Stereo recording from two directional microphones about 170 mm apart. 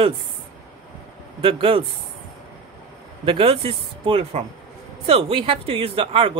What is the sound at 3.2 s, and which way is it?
Speech, 35° right (ahead or behind).